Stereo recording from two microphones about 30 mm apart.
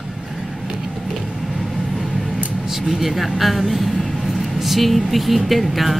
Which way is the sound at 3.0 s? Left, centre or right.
Centre.